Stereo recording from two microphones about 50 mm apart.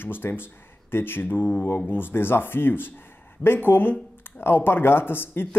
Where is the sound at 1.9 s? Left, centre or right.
Left.